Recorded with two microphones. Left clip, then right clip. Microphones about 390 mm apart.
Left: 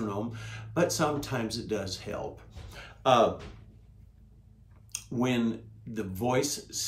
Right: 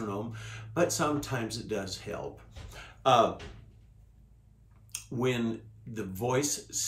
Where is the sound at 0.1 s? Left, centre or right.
Centre.